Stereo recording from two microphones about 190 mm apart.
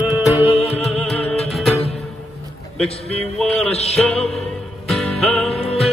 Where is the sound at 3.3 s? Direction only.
Centre (ahead or behind).